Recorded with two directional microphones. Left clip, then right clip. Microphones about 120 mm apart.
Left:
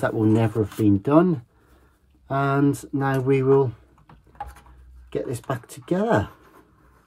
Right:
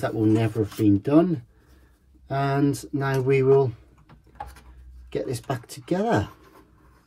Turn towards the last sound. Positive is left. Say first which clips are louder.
# left 2 dB
turn(degrees=20)  # may be behind; listen again after turning